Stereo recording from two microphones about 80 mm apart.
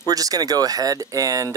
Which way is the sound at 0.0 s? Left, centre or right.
Right.